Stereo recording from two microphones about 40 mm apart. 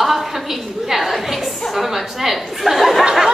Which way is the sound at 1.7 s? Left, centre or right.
Centre.